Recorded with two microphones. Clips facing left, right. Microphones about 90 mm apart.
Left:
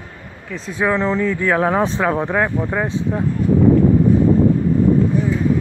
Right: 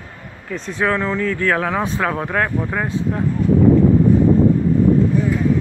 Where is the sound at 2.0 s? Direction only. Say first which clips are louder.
Left 2 dB; 15° left (ahead or behind).